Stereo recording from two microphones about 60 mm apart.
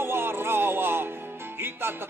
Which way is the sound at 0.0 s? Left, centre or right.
Right.